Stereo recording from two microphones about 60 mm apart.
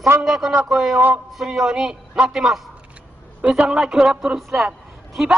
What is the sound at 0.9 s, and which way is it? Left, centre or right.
Music, right.